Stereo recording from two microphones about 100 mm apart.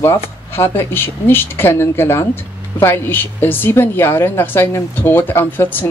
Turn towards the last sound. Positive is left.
turn(degrees=20)  # may be behind; listen again after turning